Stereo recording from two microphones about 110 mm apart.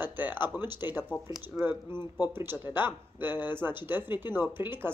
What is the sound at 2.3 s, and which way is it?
Speech, 20° right (ahead or behind).